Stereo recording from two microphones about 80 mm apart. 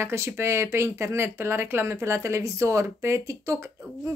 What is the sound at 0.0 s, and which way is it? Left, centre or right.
Speech, right.